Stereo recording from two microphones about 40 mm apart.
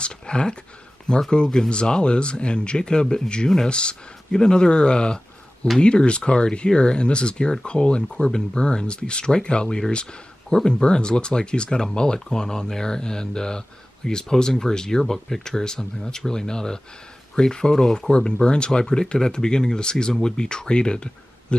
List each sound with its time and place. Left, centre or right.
0.0 s speech: left
18.1 s speech: left